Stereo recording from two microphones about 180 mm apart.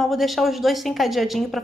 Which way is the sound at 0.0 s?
Centre (ahead or behind).